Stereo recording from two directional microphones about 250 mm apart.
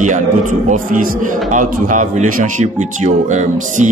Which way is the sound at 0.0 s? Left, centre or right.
Right.